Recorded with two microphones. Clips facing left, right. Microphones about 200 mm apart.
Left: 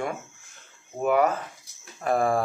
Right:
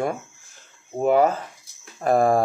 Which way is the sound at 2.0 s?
40° right (ahead or behind).